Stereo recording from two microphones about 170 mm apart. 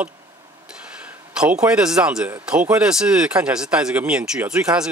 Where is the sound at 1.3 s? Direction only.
5° right (ahead or behind).